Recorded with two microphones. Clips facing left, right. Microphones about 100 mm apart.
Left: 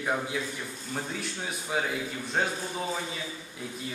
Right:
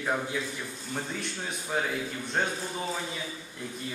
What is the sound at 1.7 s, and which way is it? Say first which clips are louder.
Speech: even; 5° left (ahead or behind).